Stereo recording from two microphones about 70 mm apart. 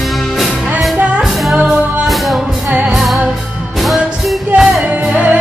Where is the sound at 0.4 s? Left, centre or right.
Centre.